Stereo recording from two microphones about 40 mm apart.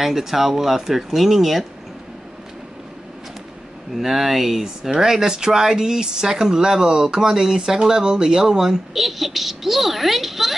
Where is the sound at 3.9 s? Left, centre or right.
Centre.